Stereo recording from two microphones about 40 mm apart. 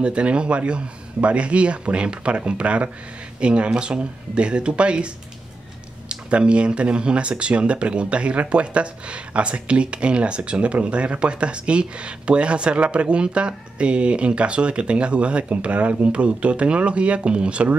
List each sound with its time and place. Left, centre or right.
0.0 s speech: right